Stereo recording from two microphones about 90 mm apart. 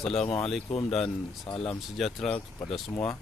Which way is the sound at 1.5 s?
90° left.